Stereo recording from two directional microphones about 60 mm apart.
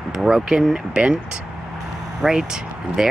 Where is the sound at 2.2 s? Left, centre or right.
Centre.